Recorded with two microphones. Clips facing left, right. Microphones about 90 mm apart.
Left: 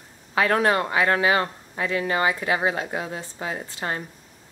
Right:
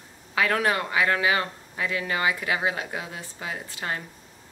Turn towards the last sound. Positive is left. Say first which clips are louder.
# left 3 dB
turn(degrees=30)  # may be behind; listen again after turning